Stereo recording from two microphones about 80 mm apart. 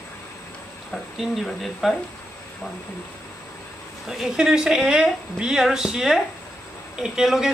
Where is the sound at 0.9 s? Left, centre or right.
Centre.